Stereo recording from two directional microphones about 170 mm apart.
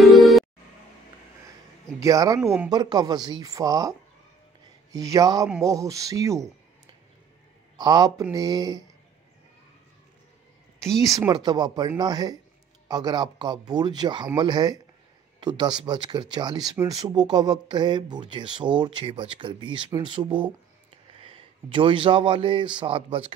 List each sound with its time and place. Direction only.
0.0 s music: centre (ahead or behind)
2.0 s speech: 20° right (ahead or behind)
4.9 s speech: 20° right (ahead or behind)
7.7 s speech: 25° right (ahead or behind)
10.8 s speech: centre (ahead or behind)
11.2 s speech: 25° right (ahead or behind)